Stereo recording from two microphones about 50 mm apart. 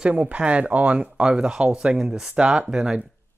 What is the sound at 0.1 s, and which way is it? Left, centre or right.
Speech, right.